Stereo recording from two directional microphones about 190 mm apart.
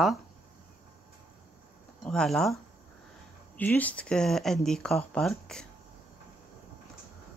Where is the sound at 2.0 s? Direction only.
5° left (ahead or behind).